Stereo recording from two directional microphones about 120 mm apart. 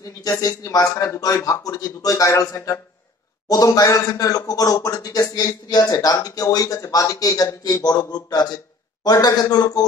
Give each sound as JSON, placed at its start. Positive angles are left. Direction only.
{"t": 0.0, "sound": "a man's voice", "side_deg": 30}